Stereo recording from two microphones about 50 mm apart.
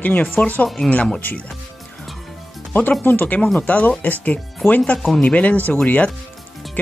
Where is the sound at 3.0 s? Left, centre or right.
Left.